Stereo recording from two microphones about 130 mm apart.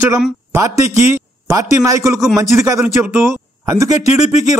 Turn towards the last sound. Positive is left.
turn(degrees=60)  # may be behind; listen again after turning